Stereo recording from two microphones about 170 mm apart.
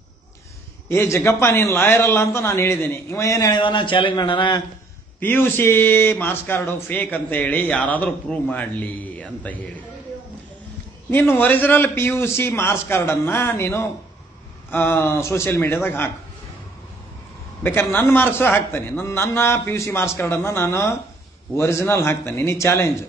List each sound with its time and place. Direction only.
0.8 s speech: 15° left (ahead or behind)
5.2 s speech: 10° left (ahead or behind)
11.1 s speech: 10° left (ahead or behind)
17.6 s speech: 15° left (ahead or behind)